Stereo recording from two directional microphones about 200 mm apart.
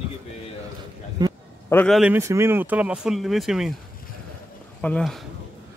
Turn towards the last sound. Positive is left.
turn(degrees=5)  # may be behind; listen again after turning